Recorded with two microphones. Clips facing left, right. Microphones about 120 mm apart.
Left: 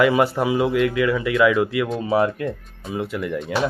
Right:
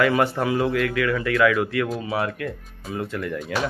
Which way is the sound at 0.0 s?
15° left (ahead or behind).